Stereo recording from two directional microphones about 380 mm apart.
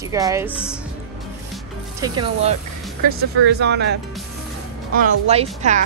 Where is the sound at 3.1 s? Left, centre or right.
Right.